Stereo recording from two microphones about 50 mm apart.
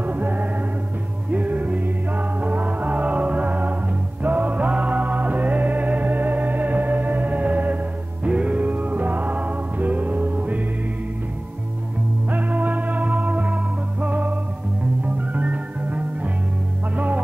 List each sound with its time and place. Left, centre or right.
0.0 s music: right
12.3 s music: right